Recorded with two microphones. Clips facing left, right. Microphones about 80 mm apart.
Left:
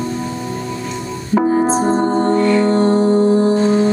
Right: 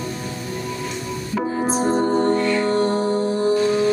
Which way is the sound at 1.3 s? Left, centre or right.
Left.